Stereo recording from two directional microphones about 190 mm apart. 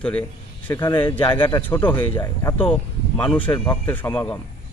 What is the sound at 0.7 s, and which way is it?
Speech, 25° left (ahead or behind).